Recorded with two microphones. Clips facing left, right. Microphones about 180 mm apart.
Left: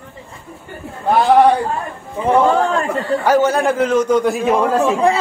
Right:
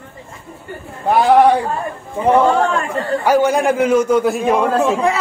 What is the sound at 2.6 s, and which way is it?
Speech, 35° left (ahead or behind).